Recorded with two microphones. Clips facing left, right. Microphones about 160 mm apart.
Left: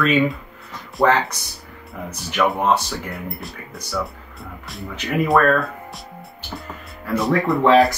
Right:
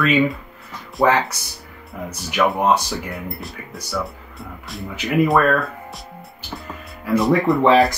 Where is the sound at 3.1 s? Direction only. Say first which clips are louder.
Right 1 dB; centre (ahead or behind).